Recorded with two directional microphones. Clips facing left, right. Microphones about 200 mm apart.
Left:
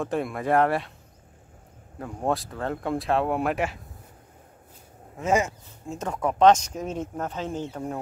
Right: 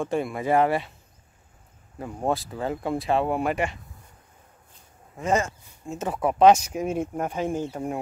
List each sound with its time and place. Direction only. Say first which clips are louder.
0.0 s speech: right 1 dB; centre (ahead or behind)
2.0 s speech: even; centre (ahead or behind)
5.1 s speech: left 1 dB; 5° left (ahead or behind)